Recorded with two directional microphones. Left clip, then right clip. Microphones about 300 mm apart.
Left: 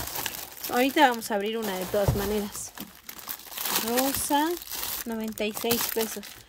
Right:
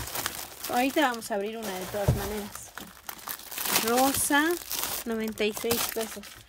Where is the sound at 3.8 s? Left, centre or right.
Centre.